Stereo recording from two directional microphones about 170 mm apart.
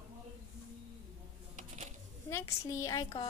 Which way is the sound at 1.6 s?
45° right (ahead or behind).